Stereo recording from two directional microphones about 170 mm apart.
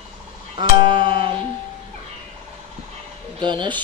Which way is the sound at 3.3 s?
25° right (ahead or behind).